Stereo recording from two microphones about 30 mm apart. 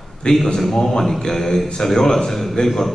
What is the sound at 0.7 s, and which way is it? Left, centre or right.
A man's voice, centre.